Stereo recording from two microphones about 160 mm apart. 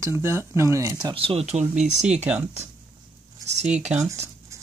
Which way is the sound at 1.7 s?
5° right (ahead or behind).